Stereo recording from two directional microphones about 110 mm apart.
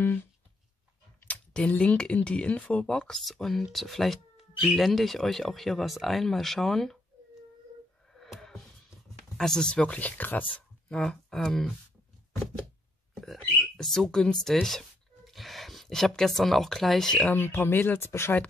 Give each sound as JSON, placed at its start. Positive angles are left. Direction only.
{"t": 1.2, "sound": "speech", "side_deg": 10}
{"t": 8.1, "sound": "music", "side_deg": 5}
{"t": 9.4, "sound": "speech", "side_deg": 5}
{"t": 13.1, "sound": "a sound", "side_deg": 0}
{"t": 13.4, "sound": "speech", "side_deg": 5}
{"t": 17.2, "sound": "speech", "side_deg": 15}